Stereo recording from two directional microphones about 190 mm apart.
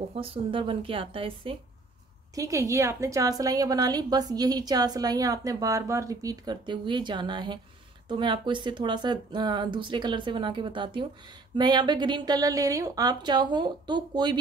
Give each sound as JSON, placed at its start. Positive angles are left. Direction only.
{"t": 0.1, "sound": "a woman's voice", "side_deg": -30}
{"t": 2.3, "sound": "a woman's voice", "side_deg": -15}